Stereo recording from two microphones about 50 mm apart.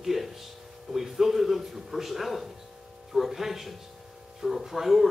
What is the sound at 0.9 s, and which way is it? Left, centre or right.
A man's voice, centre.